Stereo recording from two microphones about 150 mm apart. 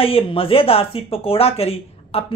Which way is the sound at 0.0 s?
40° left (ahead or behind).